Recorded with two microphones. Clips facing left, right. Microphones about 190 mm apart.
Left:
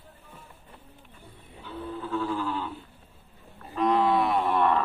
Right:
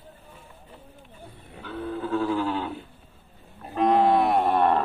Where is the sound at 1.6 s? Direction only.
70° right (ahead or behind).